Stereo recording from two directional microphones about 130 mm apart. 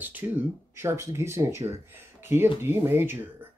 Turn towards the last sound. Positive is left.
turn(degrees=-15)  # may be behind; listen again after turning